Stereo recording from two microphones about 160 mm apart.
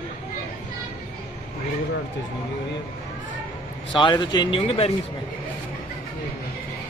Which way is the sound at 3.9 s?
30° left (ahead or behind).